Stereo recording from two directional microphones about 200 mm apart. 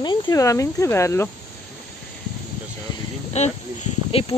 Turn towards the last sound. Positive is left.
turn(degrees=30)  # may be behind; listen again after turning